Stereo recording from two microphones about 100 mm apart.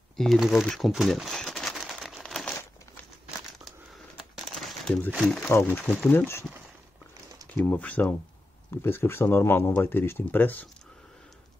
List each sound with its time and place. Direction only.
0.1 s a sound: 5° left (ahead or behind)
4.2 s crumpling: centre (ahead or behind)
5.2 s speech: 5° left (ahead or behind)
5.5 s speech: 25° left (ahead or behind)
7.6 s speech: 15° left (ahead or behind)